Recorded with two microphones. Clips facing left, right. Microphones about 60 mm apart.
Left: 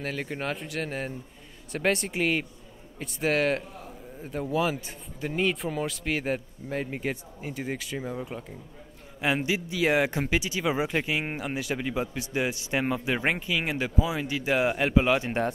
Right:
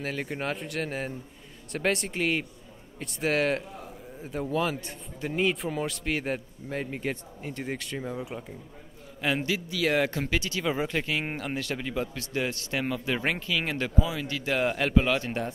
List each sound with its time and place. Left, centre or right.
0.0 s a man's voice: centre
9.2 s a man's voice: centre